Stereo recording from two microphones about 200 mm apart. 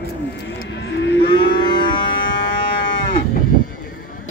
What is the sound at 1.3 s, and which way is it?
Livestock, 25° left (ahead or behind).